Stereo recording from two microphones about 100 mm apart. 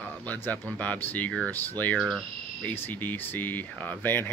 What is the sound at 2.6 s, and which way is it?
Speech, 20° left (ahead or behind).